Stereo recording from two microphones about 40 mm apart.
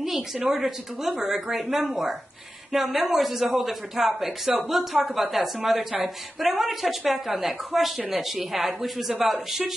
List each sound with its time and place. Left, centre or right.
0.7 s a woman's voice: centre